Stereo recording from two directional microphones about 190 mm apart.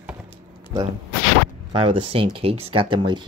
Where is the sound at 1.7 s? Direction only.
30° right (ahead or behind).